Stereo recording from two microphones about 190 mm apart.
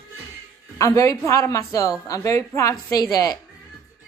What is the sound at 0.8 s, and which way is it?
A woman's voice, 15° left (ahead or behind).